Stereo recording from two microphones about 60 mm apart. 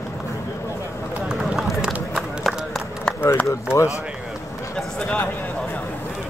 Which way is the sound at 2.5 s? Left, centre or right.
Centre.